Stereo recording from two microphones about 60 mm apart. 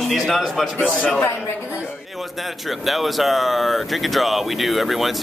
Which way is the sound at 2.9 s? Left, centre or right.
Centre.